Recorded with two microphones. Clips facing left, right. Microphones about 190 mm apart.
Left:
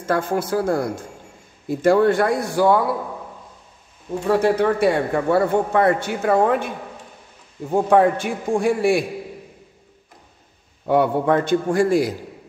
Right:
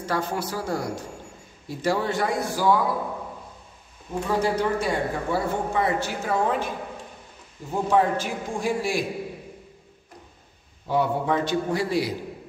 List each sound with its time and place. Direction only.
0.0 s a man's voice: 50° left (ahead or behind)
4.3 s a man's voice: 65° left (ahead or behind)
7.7 s a man's voice: 55° left (ahead or behind)
10.9 s a man's voice: 60° left (ahead or behind)